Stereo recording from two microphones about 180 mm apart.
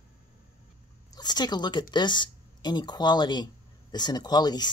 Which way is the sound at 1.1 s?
20° left (ahead or behind).